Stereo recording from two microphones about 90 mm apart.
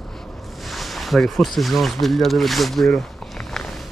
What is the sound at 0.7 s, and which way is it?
Speech, centre (ahead or behind).